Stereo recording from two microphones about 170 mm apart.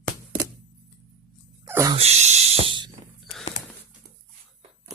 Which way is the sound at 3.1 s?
Centre (ahead or behind).